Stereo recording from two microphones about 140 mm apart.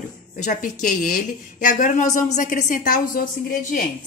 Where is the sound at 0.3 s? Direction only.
75° left (ahead or behind).